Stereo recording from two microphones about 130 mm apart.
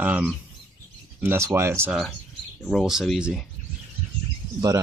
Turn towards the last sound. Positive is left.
turn(degrees=-30)  # may be behind; listen again after turning